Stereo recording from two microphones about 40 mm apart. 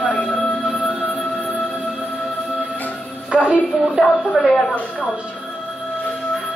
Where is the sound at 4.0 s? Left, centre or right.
Centre.